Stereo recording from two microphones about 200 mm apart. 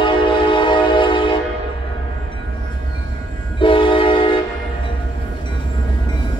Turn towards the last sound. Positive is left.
turn(degrees=25)  # may be behind; listen again after turning